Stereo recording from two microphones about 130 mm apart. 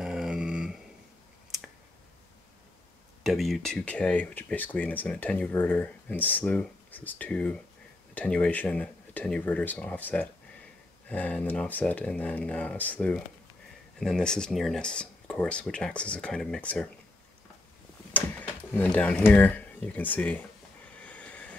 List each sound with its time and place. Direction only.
0.0 s a sound: 5° right (ahead or behind)
3.3 s speech: centre (ahead or behind)
18.1 s speech: 15° left (ahead or behind)
21.0 s train: 10° left (ahead or behind)